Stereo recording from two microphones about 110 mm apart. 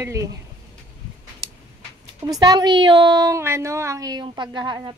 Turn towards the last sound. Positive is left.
turn(degrees=-45)  # may be behind; listen again after turning